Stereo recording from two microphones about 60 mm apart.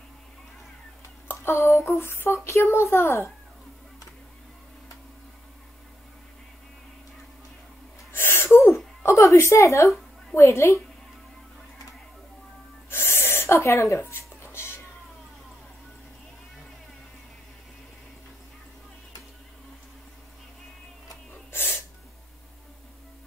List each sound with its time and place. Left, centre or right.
1.2 s speech: left
8.1 s gasp: left
10.3 s speech: left
12.9 s a sound: left
21.5 s sneeze: left